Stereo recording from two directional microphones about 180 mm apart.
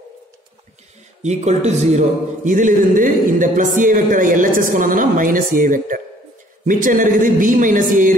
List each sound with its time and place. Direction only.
1.2 s a man's voice: 40° right (ahead or behind)